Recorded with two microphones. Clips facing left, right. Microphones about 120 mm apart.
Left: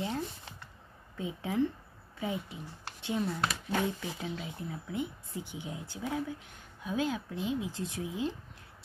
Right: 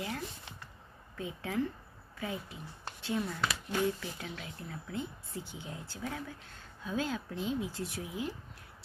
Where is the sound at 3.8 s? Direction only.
20° left (ahead or behind).